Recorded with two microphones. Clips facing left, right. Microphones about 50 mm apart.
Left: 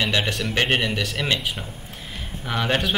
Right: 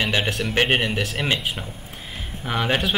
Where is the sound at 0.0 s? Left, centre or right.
Centre.